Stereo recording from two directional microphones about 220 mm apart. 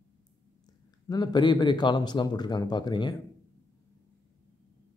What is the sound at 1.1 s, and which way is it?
Speech, 20° left (ahead or behind).